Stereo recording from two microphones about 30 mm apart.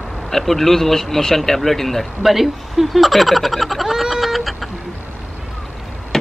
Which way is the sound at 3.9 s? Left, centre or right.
Centre.